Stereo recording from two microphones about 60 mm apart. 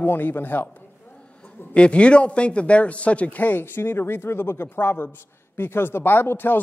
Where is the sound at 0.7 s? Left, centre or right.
Left.